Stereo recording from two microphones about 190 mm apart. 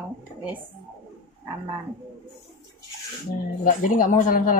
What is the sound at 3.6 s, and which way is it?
Speech, 45° left (ahead or behind).